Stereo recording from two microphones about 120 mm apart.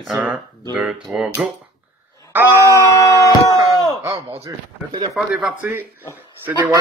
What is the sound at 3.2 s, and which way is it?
Chop, 25° right (ahead or behind).